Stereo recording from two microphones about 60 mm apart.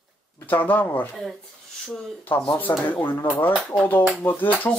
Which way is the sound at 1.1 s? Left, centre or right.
Centre.